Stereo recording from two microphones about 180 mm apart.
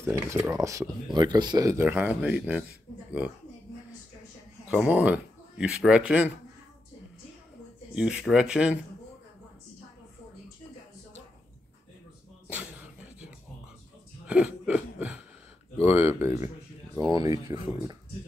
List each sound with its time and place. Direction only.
0.0 s speech: 15° right (ahead or behind)
4.6 s speech: 10° right (ahead or behind)
7.9 s speech: 5° right (ahead or behind)
12.4 s a sound: 5° right (ahead or behind)
14.2 s throat clearing: 5° right (ahead or behind)
15.8 s speech: 15° right (ahead or behind)